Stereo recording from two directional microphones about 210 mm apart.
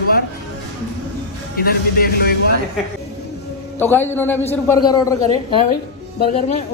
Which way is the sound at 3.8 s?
10° left (ahead or behind).